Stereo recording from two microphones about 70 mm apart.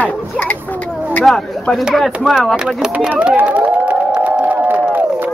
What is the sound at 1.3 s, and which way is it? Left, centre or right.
Speech, centre.